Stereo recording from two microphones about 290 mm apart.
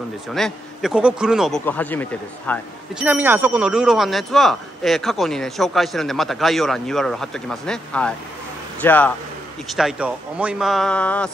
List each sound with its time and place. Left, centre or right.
0.3 s speech: centre
3.1 s speech: centre